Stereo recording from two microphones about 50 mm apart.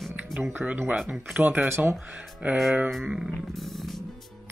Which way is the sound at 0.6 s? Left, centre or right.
Right.